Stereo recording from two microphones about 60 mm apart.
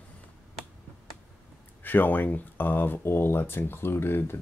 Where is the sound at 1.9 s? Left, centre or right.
Left.